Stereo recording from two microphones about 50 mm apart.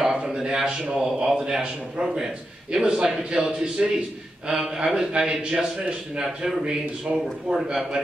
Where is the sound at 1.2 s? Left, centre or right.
Centre.